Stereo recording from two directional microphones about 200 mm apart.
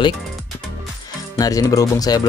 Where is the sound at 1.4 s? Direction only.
20° left (ahead or behind).